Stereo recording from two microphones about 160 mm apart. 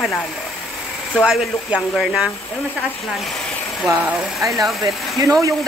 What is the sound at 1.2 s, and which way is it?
Speech, 5° right (ahead or behind).